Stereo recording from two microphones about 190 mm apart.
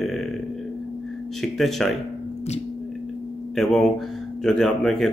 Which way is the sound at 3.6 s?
Centre (ahead or behind).